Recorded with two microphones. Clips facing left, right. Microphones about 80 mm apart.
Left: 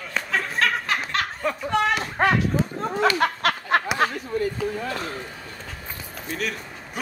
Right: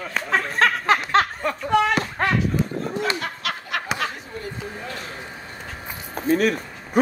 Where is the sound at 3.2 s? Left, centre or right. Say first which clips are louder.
Left 8 dB; left.